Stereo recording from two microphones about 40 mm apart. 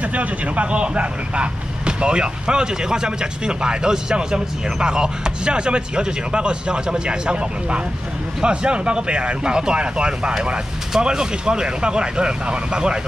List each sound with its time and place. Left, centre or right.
0.0 s speech: right; by 13.0 s centre